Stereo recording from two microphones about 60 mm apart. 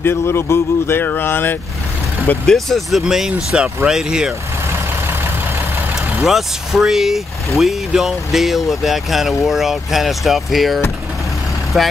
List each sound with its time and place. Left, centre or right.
0.0 s speech: left
2.4 s speech: centre
3.0 s speech: centre
6.2 s speech: centre